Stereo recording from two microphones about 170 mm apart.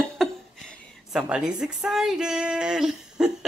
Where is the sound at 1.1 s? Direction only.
5° right (ahead or behind).